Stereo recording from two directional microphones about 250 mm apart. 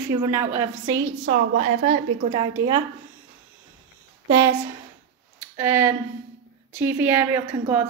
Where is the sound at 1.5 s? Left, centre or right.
Right.